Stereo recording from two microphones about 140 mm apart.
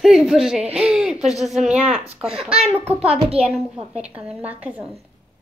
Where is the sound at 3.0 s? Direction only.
45° right (ahead or behind).